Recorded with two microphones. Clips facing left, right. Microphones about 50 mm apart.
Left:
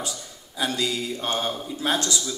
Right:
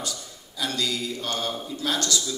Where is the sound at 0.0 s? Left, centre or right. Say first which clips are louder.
Left 1 dB; left.